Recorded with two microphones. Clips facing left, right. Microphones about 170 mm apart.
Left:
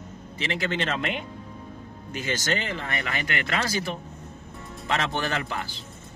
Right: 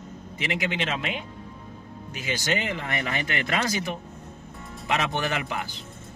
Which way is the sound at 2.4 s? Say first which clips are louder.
Right 1 dB; 15° right (ahead or behind).